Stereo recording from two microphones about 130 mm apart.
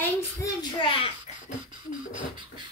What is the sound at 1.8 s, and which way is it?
Speech, 40° right (ahead or behind).